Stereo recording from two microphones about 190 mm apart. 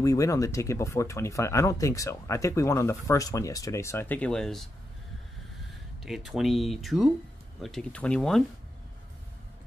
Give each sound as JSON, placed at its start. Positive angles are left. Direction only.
{"t": 0.0, "sound": "speech", "side_deg": 15}
{"t": 6.0, "sound": "speech", "side_deg": 0}